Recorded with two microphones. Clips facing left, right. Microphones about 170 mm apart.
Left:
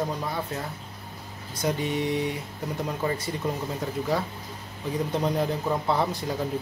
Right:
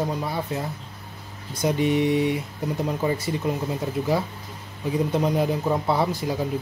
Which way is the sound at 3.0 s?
10° right (ahead or behind).